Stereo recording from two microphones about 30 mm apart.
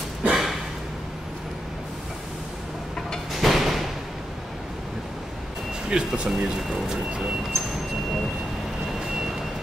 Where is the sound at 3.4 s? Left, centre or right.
Centre.